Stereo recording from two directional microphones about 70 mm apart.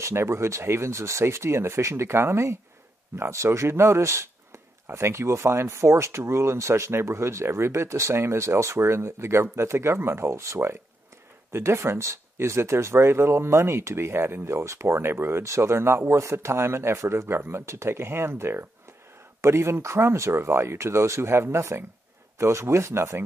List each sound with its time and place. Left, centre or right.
0.0 s a man's voice: right